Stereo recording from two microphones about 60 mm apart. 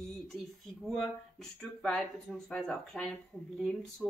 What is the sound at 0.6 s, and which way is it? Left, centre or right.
Speech, centre.